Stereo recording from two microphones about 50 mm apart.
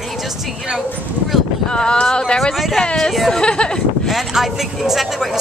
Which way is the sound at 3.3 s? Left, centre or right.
Centre.